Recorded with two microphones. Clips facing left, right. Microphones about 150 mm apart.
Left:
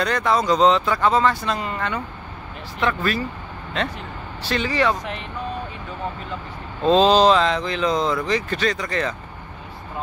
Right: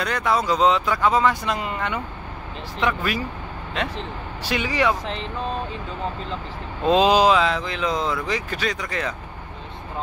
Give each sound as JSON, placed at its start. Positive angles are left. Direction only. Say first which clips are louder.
{"t": 0.0, "sound": "speech", "louder": "left 2 dB", "side_deg": -5}
{"t": 4.4, "sound": "speech", "louder": "left 1 dB", "side_deg": -10}
{"t": 5.0, "sound": "speech", "louder": "right 2 dB", "side_deg": -30}
{"t": 6.9, "sound": "speech", "louder": "left 2 dB", "side_deg": -10}